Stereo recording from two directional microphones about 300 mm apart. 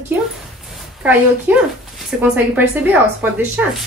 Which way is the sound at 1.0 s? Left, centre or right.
Centre.